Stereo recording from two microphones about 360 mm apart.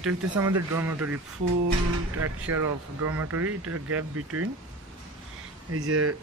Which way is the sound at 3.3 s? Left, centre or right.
Right.